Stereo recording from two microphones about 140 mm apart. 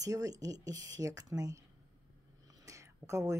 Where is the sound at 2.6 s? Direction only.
20° right (ahead or behind).